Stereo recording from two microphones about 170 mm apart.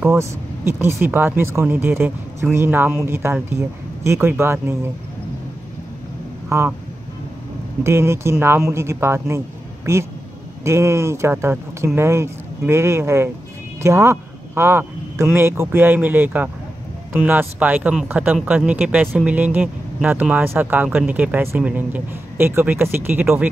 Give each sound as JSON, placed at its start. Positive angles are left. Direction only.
{"t": 0.0, "sound": "speech", "side_deg": -15}
{"t": 7.8, "sound": "speech", "side_deg": -15}
{"t": 10.6, "sound": "speech", "side_deg": -15}